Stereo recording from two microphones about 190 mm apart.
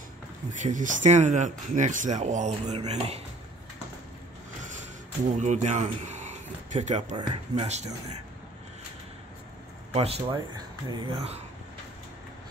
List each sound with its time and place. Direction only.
0.5 s speech: 40° right (ahead or behind)
5.3 s speech: 40° right (ahead or behind)
9.9 s speech: 30° right (ahead or behind)